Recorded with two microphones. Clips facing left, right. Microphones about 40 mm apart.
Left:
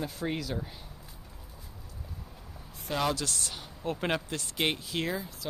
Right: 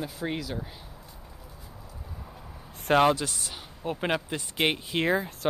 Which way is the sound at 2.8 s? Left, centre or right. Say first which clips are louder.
Right 11 dB; right.